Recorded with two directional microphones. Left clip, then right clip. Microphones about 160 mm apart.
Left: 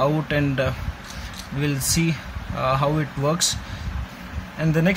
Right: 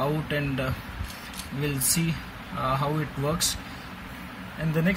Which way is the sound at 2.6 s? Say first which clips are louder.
Left 6 dB; 20° left (ahead or behind).